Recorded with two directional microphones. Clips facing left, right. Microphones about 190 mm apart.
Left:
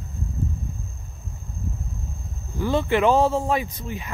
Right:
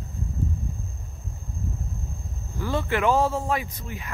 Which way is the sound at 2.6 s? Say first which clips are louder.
Left 5 dB; 20° left (ahead or behind).